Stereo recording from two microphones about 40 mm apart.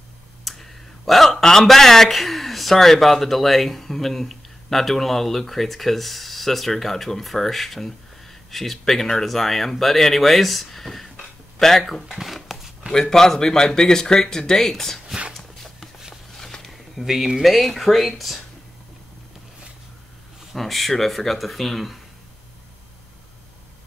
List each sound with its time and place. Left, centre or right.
0.4 s a sound: centre
1.7 s speech: centre
12.9 s speech: centre
15.3 s a sound: centre
17.0 s speech: centre
20.5 s speech: centre